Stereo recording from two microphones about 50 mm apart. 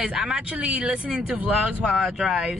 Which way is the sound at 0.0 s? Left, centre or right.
Centre.